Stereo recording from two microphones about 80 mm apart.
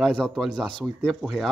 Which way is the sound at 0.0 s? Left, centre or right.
Centre.